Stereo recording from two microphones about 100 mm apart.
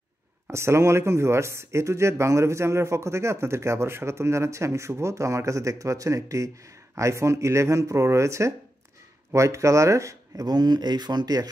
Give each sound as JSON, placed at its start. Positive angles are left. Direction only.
{"t": 0.5, "sound": "speech", "side_deg": -25}